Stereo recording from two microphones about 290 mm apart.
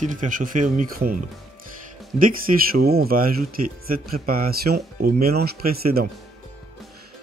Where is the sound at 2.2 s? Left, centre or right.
Right.